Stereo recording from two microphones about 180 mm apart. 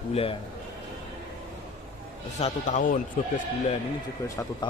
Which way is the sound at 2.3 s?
40° left (ahead or behind).